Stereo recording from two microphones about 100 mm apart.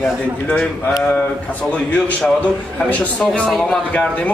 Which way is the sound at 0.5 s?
10° left (ahead or behind).